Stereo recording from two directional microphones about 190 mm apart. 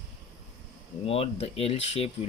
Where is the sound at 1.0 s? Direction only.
30° left (ahead or behind).